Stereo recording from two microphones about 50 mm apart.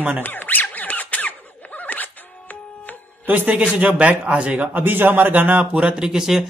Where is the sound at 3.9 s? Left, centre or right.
Right.